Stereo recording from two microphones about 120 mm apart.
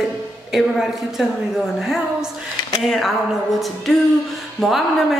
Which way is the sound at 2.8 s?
5° left (ahead or behind).